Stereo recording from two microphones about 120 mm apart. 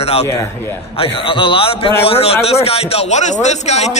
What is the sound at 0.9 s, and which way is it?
A man's voice, 50° left (ahead or behind).